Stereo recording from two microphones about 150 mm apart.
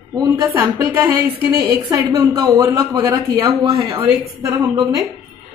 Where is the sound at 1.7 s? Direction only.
20° right (ahead or behind).